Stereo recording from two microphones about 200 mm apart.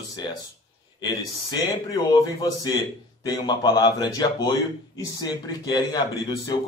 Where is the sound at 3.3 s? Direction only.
20° left (ahead or behind).